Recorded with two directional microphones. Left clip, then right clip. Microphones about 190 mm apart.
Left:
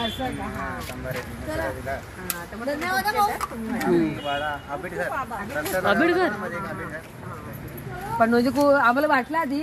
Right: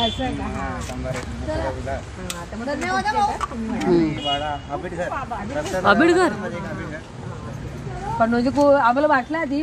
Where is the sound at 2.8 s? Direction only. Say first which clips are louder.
Right 2 dB; 30° left (ahead or behind).